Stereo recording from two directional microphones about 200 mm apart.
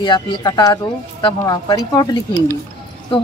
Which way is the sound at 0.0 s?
20° left (ahead or behind).